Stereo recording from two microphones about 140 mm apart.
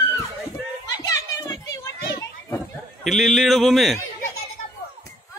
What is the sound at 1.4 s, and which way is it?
Children playing, 25° left (ahead or behind).